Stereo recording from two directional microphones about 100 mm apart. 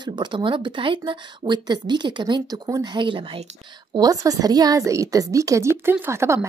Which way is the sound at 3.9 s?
35° right (ahead or behind).